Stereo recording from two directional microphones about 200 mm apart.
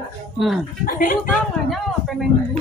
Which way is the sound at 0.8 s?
45° left (ahead or behind).